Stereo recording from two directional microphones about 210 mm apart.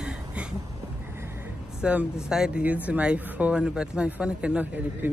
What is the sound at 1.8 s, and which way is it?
Speech, 5° right (ahead or behind).